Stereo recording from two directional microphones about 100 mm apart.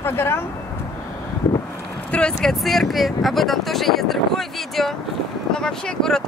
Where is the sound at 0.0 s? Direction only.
25° left (ahead or behind).